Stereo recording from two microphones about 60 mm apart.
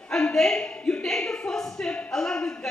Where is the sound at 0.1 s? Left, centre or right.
Centre.